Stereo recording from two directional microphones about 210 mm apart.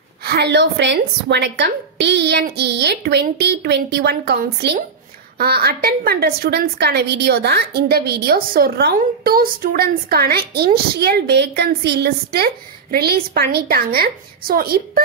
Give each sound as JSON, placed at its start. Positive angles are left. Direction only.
{"t": 0.2, "sound": "a woman's voice", "side_deg": -50}